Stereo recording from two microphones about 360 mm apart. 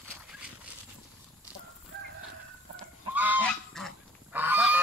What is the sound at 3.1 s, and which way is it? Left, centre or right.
Goose, centre.